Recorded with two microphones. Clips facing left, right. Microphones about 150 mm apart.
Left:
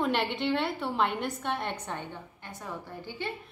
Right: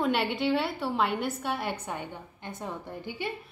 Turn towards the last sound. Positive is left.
turn(degrees=-20)  # may be behind; listen again after turning